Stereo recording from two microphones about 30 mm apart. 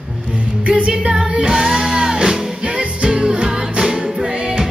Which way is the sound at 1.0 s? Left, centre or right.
Right.